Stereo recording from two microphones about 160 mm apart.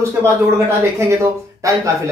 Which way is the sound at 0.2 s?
15° right (ahead or behind).